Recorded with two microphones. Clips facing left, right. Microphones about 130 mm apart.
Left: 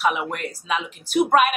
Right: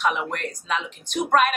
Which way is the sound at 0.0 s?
5° left (ahead or behind).